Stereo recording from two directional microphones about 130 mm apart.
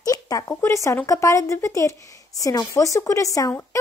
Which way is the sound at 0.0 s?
25° left (ahead or behind).